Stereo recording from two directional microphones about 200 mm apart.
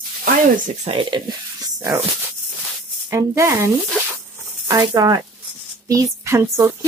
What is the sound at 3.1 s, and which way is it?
Speech, 15° right (ahead or behind).